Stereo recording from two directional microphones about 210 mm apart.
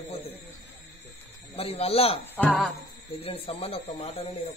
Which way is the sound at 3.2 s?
30° left (ahead or behind).